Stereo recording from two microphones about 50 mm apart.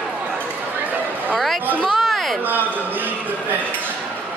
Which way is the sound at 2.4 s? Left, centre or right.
Right.